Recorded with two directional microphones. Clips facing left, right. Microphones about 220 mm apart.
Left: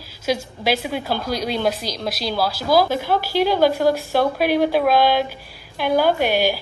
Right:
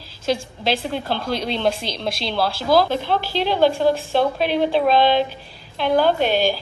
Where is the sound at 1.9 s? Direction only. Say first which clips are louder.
Left 1 dB; 25° right (ahead or behind).